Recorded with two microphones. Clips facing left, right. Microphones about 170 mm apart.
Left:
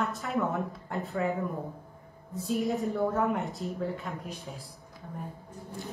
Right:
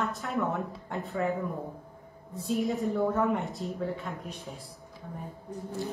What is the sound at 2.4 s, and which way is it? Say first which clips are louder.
A woman's voice: even; centre (ahead or behind).